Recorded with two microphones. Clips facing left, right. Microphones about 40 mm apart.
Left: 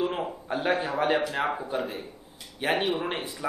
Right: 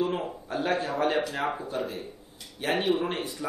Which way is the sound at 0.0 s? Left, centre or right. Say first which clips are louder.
Even; centre.